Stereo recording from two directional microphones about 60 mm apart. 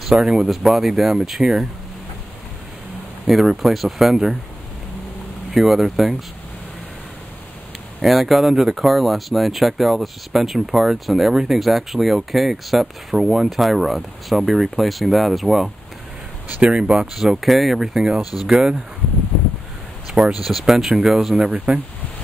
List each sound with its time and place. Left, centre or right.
0.0 s speech: centre
3.3 s speech: centre
5.5 s speech: centre
8.0 s speech: centre
16.4 s speech: right
16.7 s speech: centre
18.2 s speech: left
18.5 s speech: centre
20.1 s a sound: centre
20.4 s speech: centre
21.4 s speech: right